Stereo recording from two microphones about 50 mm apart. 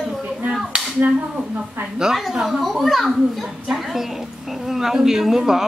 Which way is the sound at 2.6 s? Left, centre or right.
Centre.